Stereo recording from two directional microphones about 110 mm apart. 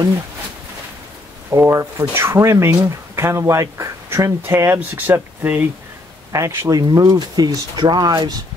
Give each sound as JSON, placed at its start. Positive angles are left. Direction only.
{"t": 1.5, "sound": "speech", "side_deg": -25}
{"t": 6.8, "sound": "speech", "side_deg": -35}